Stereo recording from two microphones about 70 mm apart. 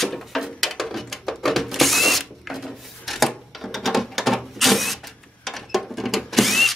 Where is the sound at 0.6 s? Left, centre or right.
Centre.